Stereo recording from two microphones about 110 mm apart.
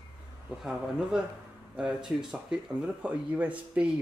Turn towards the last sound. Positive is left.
turn(degrees=-10)  # may be behind; listen again after turning